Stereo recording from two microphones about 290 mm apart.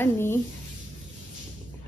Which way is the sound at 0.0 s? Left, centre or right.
Centre.